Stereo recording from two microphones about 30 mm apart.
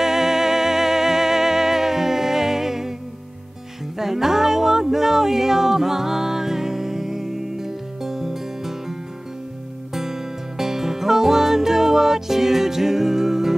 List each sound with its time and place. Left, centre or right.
0.0 s music: centre
4.0 s music: centre
9.9 s music: centre